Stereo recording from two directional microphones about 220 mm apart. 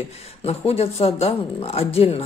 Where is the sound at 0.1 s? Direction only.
25° left (ahead or behind).